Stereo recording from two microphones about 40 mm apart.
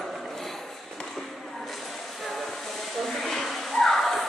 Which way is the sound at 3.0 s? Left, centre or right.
Centre.